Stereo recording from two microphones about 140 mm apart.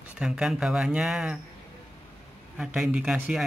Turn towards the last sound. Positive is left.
turn(degrees=-5)  # may be behind; listen again after turning